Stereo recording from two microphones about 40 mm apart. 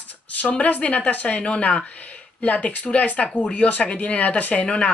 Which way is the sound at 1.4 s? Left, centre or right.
Left.